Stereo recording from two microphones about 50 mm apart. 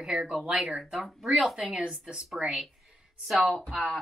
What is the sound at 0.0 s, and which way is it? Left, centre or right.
Speech, centre.